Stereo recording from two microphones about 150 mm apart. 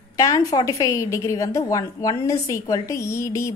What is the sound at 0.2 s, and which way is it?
A woman's voice, 20° left (ahead or behind).